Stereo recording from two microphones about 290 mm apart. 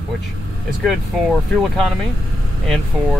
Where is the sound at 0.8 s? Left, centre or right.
Centre.